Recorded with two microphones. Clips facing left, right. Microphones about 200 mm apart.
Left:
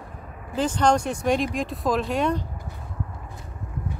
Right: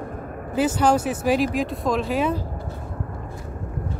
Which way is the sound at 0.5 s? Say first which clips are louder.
Right 2 dB; 10° right (ahead or behind).